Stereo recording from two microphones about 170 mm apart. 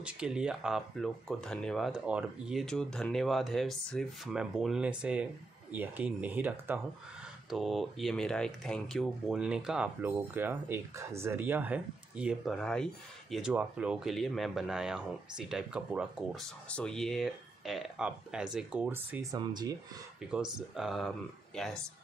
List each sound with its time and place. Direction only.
0.0 s speech: 5° right (ahead or behind)
7.4 s speech: centre (ahead or behind)
19.3 s speech: 25° right (ahead or behind)
20.2 s speech: 5° right (ahead or behind)